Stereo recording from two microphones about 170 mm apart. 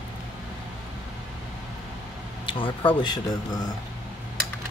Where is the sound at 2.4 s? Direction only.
30° left (ahead or behind).